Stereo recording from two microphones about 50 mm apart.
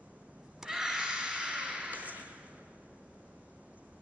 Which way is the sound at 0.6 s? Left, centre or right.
Centre.